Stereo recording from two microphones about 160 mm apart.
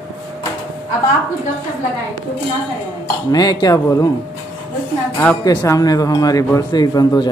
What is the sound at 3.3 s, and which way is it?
Speech, 25° left (ahead or behind).